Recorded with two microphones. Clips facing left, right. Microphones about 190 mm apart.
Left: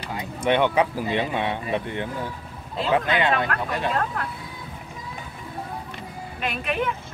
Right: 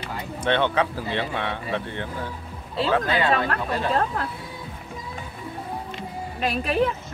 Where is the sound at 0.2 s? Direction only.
10° left (ahead or behind).